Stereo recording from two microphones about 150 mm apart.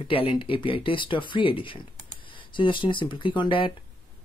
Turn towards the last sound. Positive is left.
turn(degrees=35)  # may be behind; listen again after turning